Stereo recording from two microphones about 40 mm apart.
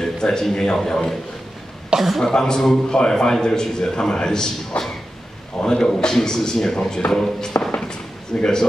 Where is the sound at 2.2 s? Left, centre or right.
Centre.